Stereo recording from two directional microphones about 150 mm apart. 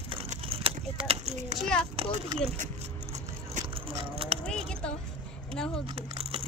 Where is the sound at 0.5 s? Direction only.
35° right (ahead or behind).